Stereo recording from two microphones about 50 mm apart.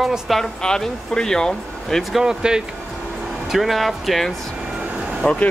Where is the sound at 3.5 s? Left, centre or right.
Centre.